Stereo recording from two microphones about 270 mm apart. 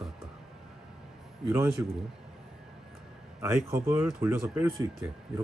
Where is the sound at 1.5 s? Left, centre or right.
Centre.